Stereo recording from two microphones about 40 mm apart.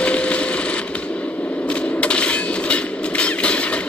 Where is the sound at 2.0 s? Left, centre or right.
Left.